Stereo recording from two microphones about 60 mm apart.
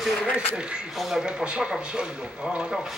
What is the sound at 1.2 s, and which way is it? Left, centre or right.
Speech, centre.